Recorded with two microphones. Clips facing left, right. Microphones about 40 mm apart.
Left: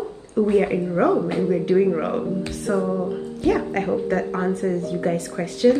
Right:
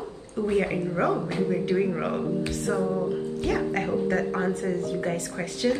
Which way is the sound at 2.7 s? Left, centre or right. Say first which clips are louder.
Left 5 dB; centre.